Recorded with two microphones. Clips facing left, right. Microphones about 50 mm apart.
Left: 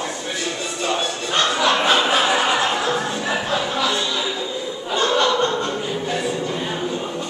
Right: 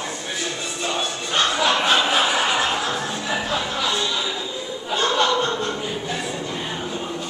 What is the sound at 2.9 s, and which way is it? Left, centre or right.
Music, centre.